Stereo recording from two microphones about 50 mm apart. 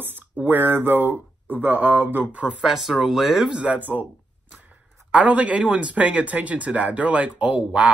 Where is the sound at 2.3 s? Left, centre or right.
Right.